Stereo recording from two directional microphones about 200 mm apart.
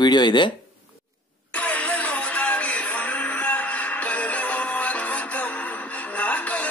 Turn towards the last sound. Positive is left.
turn(degrees=5)  # may be behind; listen again after turning